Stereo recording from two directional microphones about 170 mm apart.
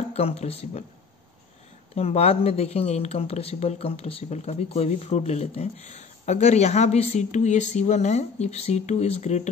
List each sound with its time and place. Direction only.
0.1 s speech: 35° left (ahead or behind)
2.0 s speech: 35° left (ahead or behind)